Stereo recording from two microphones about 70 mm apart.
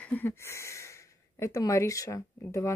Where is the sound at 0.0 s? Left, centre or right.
Left.